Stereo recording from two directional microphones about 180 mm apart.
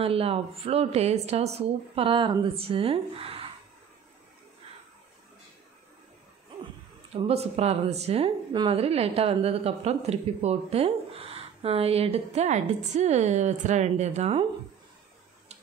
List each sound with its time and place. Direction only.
0.0 s a woman's voice: 30° right (ahead or behind)
7.1 s a woman's voice: 35° right (ahead or behind)